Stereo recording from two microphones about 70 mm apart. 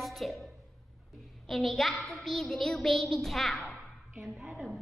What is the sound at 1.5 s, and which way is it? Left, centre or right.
A woman's voice, centre.